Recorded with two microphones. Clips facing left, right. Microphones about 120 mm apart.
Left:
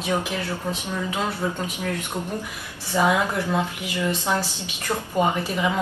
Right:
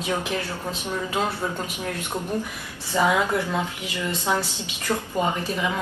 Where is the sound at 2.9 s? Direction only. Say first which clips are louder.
Even; 15° left (ahead or behind).